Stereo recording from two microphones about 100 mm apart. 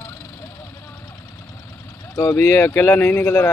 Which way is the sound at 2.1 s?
25° left (ahead or behind).